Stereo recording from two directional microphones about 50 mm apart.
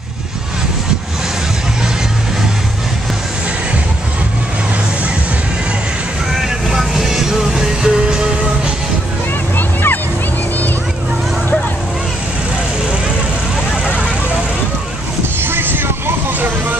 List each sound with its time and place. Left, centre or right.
6.7 s music: centre
9.6 s vehicle: left
15.4 s vehicle: right